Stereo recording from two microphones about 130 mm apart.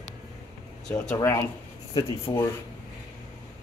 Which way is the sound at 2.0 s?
40° left (ahead or behind).